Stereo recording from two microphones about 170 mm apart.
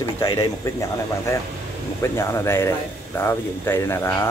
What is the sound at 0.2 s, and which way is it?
Speech, 20° left (ahead or behind).